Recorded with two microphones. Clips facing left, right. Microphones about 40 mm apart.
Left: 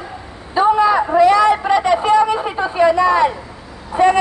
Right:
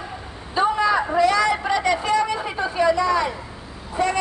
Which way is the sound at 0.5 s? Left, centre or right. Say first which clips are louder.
Left 6 dB; centre.